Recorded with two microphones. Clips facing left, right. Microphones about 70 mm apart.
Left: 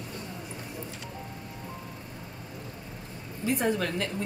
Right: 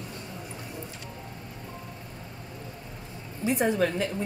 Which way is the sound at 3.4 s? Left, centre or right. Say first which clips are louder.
Right 3 dB; right.